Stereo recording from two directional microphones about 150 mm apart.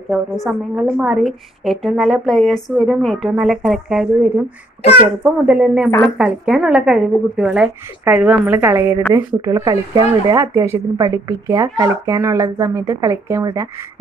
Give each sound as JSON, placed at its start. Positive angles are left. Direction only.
{"t": 0.1, "sound": "a woman's voice", "side_deg": -5}